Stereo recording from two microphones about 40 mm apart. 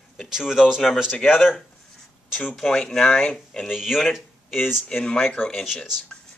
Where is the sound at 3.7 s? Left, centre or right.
Centre.